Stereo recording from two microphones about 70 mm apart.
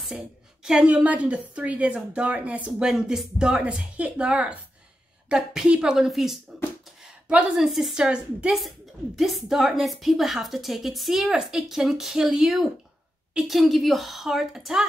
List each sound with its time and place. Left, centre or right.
0.7 s a woman's voice: centre
7.2 s speech: centre
7.6 s speech: centre
8.5 s a woman's voice: centre